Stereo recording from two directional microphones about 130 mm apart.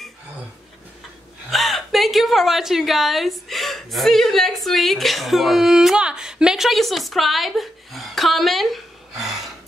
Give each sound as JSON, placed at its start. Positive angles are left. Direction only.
{"t": 1.5, "sound": "a woman's voice", "side_deg": 0}